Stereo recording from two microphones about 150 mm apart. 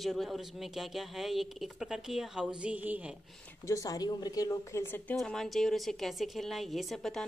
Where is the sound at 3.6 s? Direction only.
20° left (ahead or behind).